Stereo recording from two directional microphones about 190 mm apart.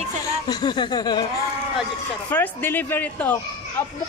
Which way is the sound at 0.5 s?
20° left (ahead or behind).